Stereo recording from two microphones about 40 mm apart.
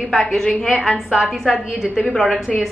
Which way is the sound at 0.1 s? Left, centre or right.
Centre.